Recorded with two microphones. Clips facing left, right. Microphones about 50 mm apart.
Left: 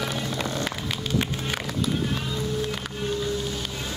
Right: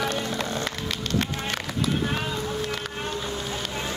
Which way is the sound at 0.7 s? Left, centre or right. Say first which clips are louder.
Even; centre.